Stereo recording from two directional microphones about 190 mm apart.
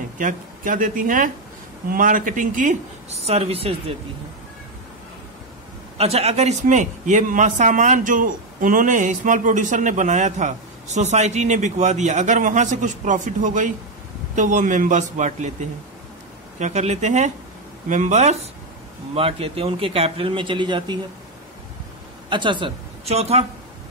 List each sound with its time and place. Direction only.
0.2 s a man's voice: 45° right (ahead or behind)
5.9 s a man's voice: 35° right (ahead or behind)
22.3 s a woman's voice: 25° right (ahead or behind)